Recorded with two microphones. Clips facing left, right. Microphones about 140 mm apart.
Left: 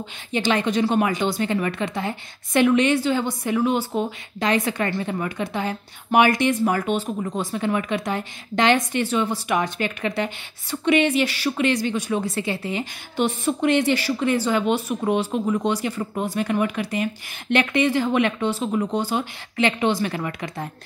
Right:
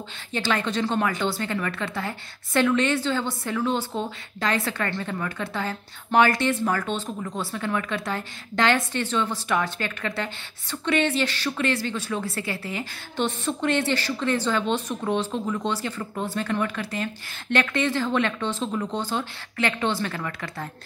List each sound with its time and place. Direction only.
0.3 s a woman's voice: 20° left (ahead or behind)